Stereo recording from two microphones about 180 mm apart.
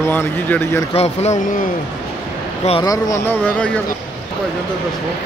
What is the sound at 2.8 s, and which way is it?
Speech, 20° left (ahead or behind).